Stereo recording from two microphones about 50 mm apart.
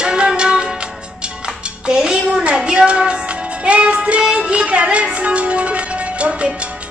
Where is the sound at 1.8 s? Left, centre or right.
Centre.